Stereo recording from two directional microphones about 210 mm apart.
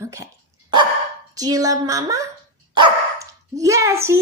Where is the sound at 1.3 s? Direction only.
15° right (ahead or behind).